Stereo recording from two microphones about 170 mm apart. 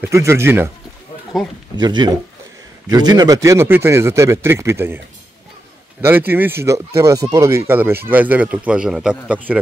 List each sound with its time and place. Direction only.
0.0 s speech: 15° right (ahead or behind)
1.3 s speech: centre (ahead or behind)
1.8 s speech: 25° right (ahead or behind); by 9.6 s 10° right (ahead or behind)